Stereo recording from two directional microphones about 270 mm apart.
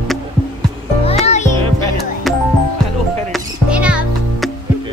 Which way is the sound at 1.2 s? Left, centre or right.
Left.